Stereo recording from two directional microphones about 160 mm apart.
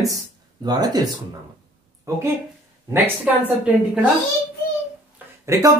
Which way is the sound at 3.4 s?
5° right (ahead or behind).